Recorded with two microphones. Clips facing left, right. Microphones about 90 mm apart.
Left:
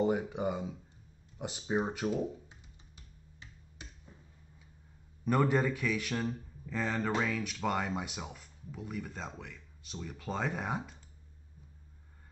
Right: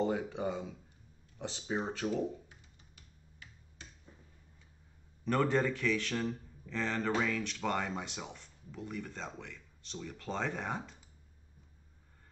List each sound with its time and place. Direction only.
0.0 s a sound: 15° left (ahead or behind)
1.4 s a man's voice: 15° left (ahead or behind)
3.0 s finger snapping: 20° left (ahead or behind)
5.2 s a man's voice: 10° left (ahead or behind)